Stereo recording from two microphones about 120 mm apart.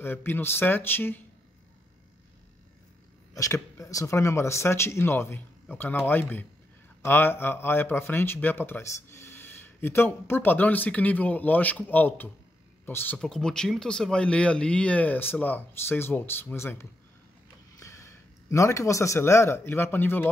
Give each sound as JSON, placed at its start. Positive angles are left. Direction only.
{"t": 0.0, "sound": "speech", "side_deg": 15}
{"t": 3.3, "sound": "speech", "side_deg": 25}